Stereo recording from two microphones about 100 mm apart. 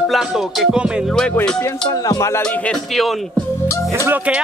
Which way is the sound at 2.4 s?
10° left (ahead or behind).